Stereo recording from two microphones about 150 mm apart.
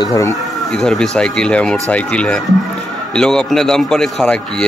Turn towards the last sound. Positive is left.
turn(degrees=5)  # may be behind; listen again after turning